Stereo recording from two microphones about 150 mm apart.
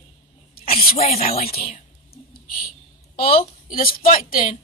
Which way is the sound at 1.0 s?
45° left (ahead or behind).